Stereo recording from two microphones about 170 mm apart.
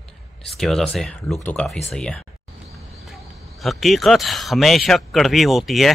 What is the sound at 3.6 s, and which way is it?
Speech, centre (ahead or behind).